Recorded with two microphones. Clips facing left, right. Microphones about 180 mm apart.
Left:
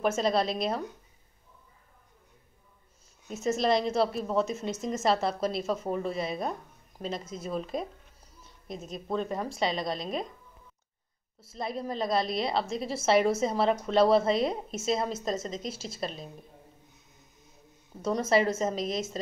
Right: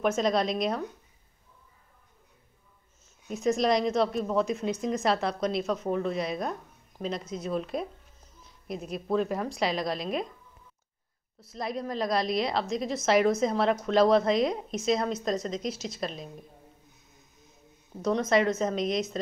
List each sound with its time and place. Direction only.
0.0 s a woman's voice: 5° left (ahead or behind)
3.3 s a woman's voice: 5° left (ahead or behind)
11.5 s a woman's voice: centre (ahead or behind)
15.7 s a woman's voice: 30° left (ahead or behind)
16.0 s a woman's voice: centre (ahead or behind)
18.0 s a woman's voice: 5° left (ahead or behind)